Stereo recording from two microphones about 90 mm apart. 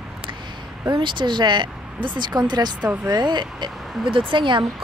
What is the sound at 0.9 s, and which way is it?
A woman's voice, 60° right (ahead or behind).